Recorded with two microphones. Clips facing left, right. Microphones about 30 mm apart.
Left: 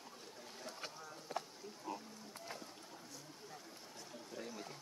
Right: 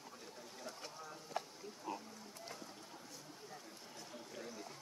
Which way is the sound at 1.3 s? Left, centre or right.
Left.